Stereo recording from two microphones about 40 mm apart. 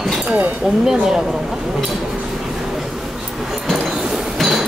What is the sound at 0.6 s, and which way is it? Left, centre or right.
Speech, centre.